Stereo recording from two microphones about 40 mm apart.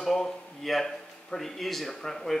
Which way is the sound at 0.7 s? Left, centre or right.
Centre.